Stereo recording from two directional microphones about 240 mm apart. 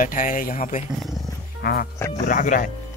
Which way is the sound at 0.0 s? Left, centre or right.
Left.